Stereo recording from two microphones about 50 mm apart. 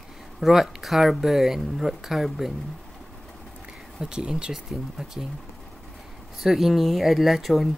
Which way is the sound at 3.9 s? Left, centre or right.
Centre.